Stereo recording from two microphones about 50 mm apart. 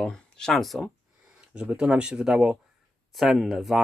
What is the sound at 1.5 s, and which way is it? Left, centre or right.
Speech, right.